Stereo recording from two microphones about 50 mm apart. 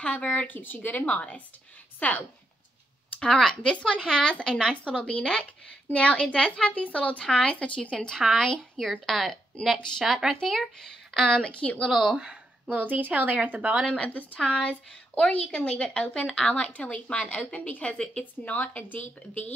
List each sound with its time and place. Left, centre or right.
0.0 s a woman's voice: left
3.2 s a woman's voice: centre
4.0 s a woman's voice: centre
11.2 s a woman's voice: left
11.9 s speech: centre
12.2 s a woman's voice: right
13.8 s a woman's voice: left
17.9 s speech: centre
18.2 s a woman's voice: left